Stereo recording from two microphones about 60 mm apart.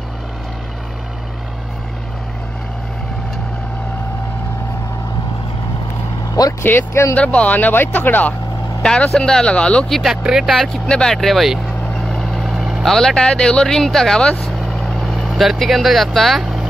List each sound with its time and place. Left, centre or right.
6.6 s speech: left
7.2 s speech: left
8.8 s speech: centre
10.0 s speech: centre
10.9 s speech: centre
12.1 s vehicle: centre
12.9 s speech: centre
14.7 s vehicle: centre